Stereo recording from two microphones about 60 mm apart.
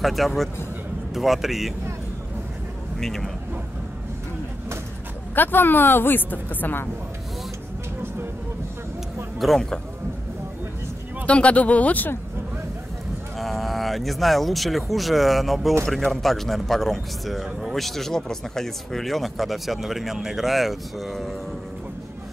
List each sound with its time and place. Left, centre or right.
0.0 s a man's voice: centre
3.0 s speech: centre
5.3 s a woman's voice: left
9.4 s speech: centre
11.2 s speech: centre
13.4 s a man's voice: centre